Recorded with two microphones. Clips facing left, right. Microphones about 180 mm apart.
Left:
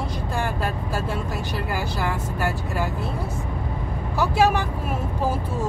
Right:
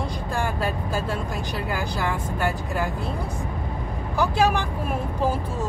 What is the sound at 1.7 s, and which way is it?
Speech, 5° left (ahead or behind).